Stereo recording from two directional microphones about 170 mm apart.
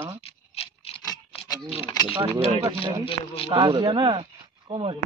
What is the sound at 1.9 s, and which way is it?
Speech, 25° left (ahead or behind).